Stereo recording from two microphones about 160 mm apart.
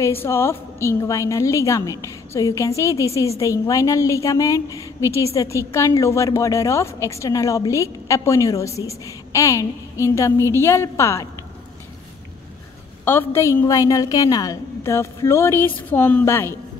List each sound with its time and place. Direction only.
0.0 s a woman's voice: 15° left (ahead or behind)
13.0 s a woman's voice: 15° left (ahead or behind)